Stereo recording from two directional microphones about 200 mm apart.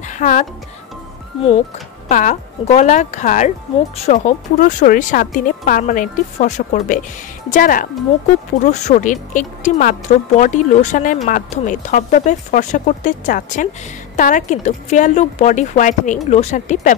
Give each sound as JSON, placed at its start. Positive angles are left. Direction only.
{"t": 0.1, "sound": "speech", "side_deg": 40}
{"t": 2.0, "sound": "speech", "side_deg": 40}